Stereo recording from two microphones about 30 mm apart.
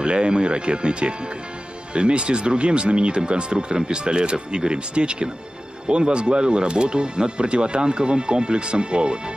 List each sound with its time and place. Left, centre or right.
0.0 s speech: right